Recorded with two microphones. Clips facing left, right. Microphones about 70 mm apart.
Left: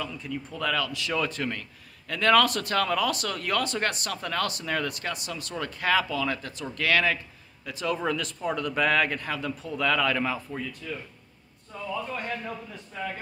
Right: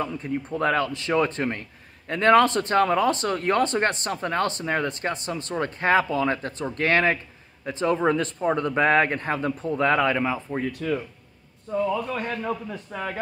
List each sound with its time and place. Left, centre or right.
0.0 s speech: right
10.7 s a man's voice: right
12.4 s a man's voice: right